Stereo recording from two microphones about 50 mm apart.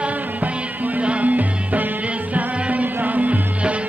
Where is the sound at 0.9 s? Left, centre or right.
Right.